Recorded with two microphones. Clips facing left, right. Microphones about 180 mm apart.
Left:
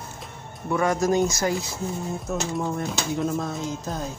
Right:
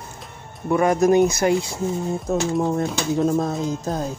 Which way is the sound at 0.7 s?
20° right (ahead or behind).